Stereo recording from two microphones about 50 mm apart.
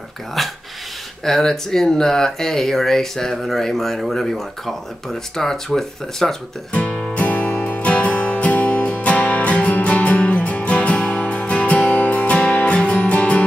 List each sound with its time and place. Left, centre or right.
0.4 s speech: centre
6.7 s music: left